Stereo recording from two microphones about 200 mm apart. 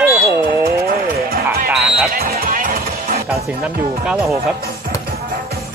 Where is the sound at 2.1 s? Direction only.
50° right (ahead or behind).